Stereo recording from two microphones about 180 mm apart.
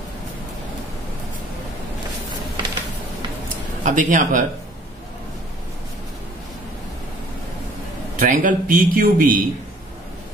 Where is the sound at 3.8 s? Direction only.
45° right (ahead or behind).